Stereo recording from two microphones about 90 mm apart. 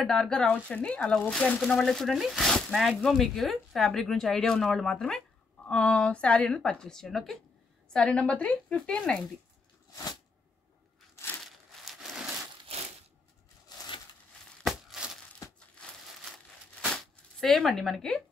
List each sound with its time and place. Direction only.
0.0 s speech: 5° left (ahead or behind)
11.4 s crumpling: centre (ahead or behind)
13.7 s crushing: 50° left (ahead or behind)
14.6 s a sound: centre (ahead or behind)
15.8 s crumpling: 10° left (ahead or behind)